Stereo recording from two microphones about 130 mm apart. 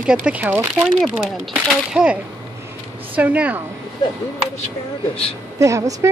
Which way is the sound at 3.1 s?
10° right (ahead or behind).